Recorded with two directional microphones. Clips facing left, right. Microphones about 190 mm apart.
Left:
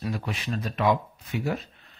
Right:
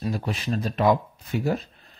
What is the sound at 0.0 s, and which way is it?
Speech, 35° right (ahead or behind).